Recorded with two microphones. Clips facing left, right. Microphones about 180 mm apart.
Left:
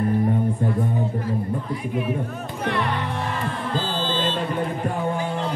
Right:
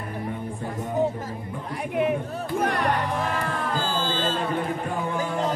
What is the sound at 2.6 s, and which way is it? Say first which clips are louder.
Speech: even; 45° right (ahead or behind).